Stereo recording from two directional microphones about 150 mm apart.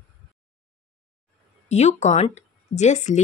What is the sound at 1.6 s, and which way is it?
Speech, 50° left (ahead or behind).